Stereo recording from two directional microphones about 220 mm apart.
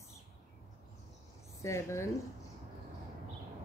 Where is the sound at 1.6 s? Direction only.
15° left (ahead or behind).